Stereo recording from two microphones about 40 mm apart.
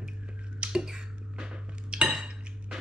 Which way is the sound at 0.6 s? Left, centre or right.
Centre.